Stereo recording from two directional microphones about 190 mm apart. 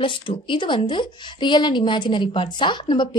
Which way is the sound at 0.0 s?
25° left (ahead or behind).